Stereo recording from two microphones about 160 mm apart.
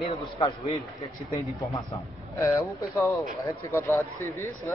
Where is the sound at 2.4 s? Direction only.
20° left (ahead or behind).